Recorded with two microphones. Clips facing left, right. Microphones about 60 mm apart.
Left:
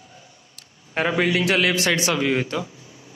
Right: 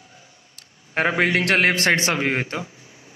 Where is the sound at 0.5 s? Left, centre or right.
Right.